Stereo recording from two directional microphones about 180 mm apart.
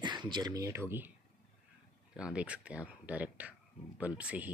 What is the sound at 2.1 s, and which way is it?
Speech, 5° right (ahead or behind).